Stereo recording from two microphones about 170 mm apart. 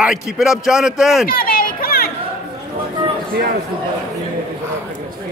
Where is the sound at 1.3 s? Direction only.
60° left (ahead or behind).